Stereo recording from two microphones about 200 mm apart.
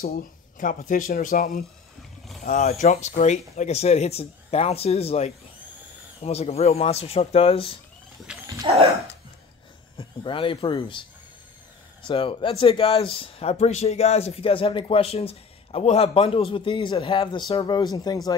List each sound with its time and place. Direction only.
0.0 s speech: 45° left (ahead or behind); by 7.8 s 25° left (ahead or behind)
8.3 s dog: 5° right (ahead or behind)
8.6 s dog: 30° right (ahead or behind)
9.9 s speech: 25° left (ahead or behind)